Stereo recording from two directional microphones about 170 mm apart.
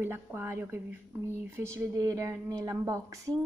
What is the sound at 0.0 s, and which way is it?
Speech, 15° right (ahead or behind).